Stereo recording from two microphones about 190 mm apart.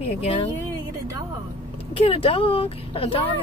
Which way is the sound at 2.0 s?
30° left (ahead or behind).